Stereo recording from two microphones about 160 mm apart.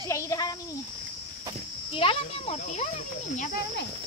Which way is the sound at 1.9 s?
35° left (ahead or behind).